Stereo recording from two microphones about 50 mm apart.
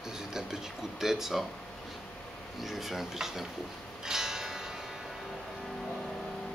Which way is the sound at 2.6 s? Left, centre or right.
Centre.